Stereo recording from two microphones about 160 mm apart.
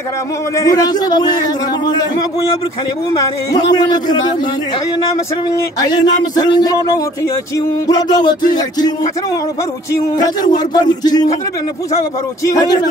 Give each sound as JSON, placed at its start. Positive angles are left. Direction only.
{"t": 0.6, "sound": "a man's voice", "side_deg": 20}
{"t": 5.8, "sound": "a man's voice", "side_deg": 25}
{"t": 10.1, "sound": "a man's voice", "side_deg": 25}
{"t": 12.4, "sound": "a man's voice", "side_deg": 25}